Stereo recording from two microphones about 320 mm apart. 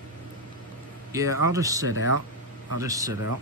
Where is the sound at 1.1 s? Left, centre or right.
Centre.